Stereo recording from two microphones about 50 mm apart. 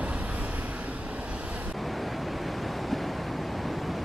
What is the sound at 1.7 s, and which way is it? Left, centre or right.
Waves, centre.